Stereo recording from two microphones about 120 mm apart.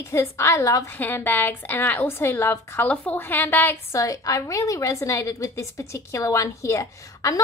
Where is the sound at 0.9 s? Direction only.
15° left (ahead or behind).